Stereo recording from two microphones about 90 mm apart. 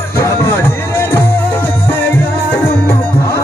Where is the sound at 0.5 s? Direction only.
25° left (ahead or behind).